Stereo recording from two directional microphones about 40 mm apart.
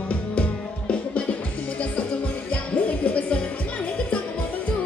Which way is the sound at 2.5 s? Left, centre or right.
Left.